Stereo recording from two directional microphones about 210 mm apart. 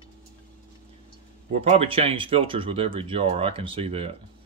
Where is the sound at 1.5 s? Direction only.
30° right (ahead or behind).